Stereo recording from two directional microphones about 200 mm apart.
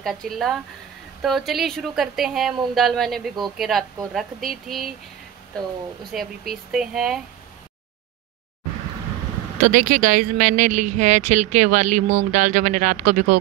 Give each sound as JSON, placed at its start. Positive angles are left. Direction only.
{"t": 0.0, "sound": "a woman's voice", "side_deg": 0}
{"t": 6.1, "sound": "a woman's voice", "side_deg": 0}
{"t": 9.6, "sound": "speech", "side_deg": -40}